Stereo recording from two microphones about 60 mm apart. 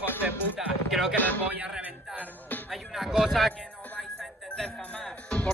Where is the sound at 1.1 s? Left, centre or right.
Left.